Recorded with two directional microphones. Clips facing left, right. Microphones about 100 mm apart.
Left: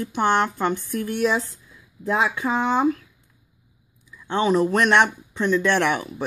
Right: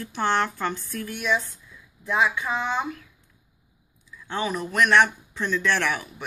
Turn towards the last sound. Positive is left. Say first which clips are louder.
# left 5 dB
turn(degrees=25)  # may be behind; listen again after turning